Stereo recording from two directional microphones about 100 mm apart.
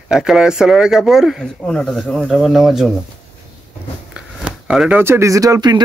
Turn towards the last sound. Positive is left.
turn(degrees=-35)  # may be behind; listen again after turning